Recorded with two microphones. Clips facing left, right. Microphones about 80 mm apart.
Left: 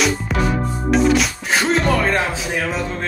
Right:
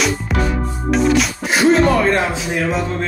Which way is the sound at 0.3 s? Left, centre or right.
Centre.